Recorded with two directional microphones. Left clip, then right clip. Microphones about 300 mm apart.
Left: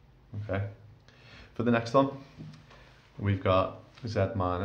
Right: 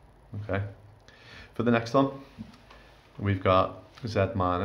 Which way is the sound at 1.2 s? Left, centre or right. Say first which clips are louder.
Right 2 dB; centre.